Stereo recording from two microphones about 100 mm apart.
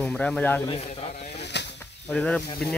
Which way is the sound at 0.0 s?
10° left (ahead or behind).